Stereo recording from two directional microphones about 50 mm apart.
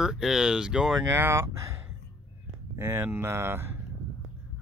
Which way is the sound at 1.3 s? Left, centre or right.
Right.